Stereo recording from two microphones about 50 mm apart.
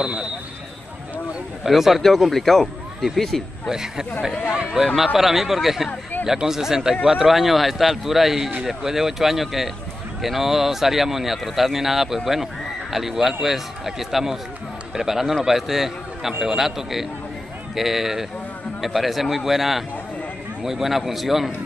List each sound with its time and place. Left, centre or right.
1.6 s speech: centre
3.6 s speech: centre